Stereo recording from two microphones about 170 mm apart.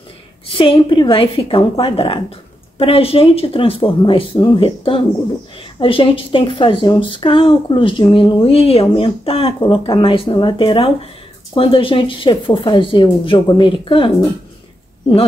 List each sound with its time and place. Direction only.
0.5 s speech: 30° left (ahead or behind)